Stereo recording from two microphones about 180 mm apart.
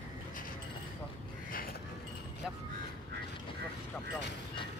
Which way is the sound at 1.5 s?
55° left (ahead or behind).